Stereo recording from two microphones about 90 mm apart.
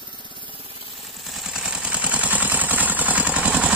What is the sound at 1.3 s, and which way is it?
Vehicle, 5° right (ahead or behind).